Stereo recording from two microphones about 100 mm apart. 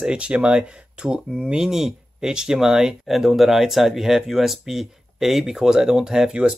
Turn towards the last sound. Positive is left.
turn(degrees=-5)  # may be behind; listen again after turning